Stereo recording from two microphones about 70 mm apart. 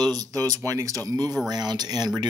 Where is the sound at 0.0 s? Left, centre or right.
Right.